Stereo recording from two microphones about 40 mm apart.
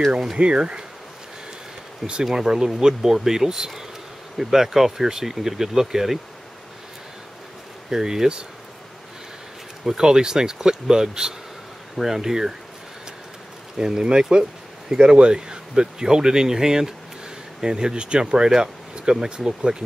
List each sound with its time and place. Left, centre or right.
0.4 s speech: right
2.2 s speech: centre
7.9 s speech: centre
9.8 s speech: centre
13.7 s speech: centre